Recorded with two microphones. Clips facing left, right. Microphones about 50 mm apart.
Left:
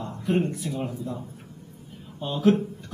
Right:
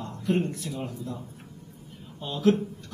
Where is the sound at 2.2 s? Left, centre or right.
Centre.